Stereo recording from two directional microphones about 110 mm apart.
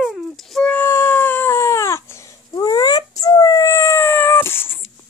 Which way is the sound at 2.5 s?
40° left (ahead or behind).